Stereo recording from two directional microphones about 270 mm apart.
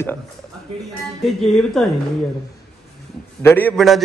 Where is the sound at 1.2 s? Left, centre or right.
Centre.